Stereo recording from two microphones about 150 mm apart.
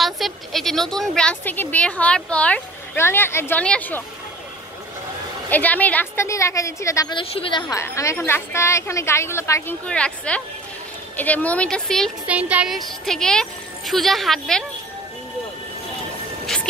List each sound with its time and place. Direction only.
0.0 s a woman's voice: centre (ahead or behind)
5.5 s a woman's voice: 10° left (ahead or behind)
7.2 s a woman's voice: 35° left (ahead or behind)
7.7 s a woman's voice: 20° left (ahead or behind)
12.3 s speech: 10° right (ahead or behind)